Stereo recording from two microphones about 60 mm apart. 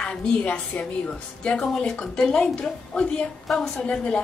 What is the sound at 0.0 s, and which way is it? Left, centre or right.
A woman's voice, centre.